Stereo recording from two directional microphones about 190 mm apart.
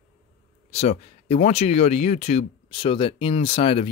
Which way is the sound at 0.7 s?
35° left (ahead or behind).